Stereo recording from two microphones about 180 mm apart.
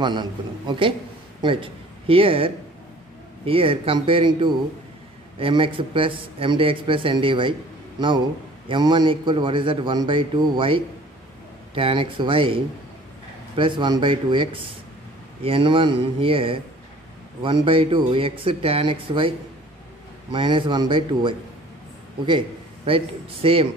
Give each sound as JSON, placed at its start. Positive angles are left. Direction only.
{"t": 0.0, "sound": "a man's voice", "side_deg": -25}
{"t": 8.6, "sound": "a man's voice", "side_deg": -25}
{"t": 20.3, "sound": "a man's voice", "side_deg": -25}
{"t": 22.8, "sound": "speech", "side_deg": -30}